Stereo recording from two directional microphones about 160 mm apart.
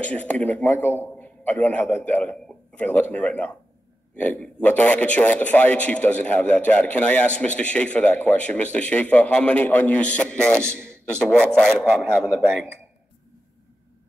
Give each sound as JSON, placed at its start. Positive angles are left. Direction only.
{"t": 0.0, "sound": "a man's voice", "side_deg": 10}
{"t": 10.7, "sound": "speech", "side_deg": -15}
{"t": 11.1, "sound": "a man's voice", "side_deg": 5}